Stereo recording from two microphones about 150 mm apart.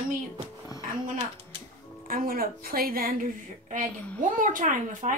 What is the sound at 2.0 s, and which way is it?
A woman's voice, 70° right (ahead or behind).